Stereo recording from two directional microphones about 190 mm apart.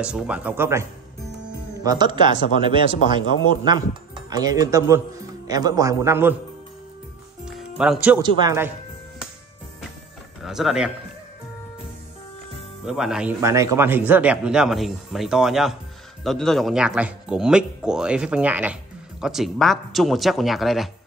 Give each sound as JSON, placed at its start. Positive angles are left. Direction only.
{"t": 0.0, "sound": "a man's voice", "side_deg": -5}
{"t": 7.4, "sound": "music", "side_deg": -5}
{"t": 8.2, "sound": "a man's voice", "side_deg": -25}
{"t": 10.4, "sound": "a man's voice", "side_deg": 0}
{"t": 12.8, "sound": "speech", "side_deg": -5}
{"t": 13.4, "sound": "speech", "side_deg": -15}